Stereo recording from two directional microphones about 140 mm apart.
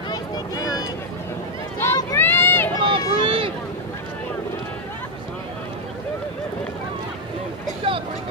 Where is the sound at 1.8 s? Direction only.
15° left (ahead or behind).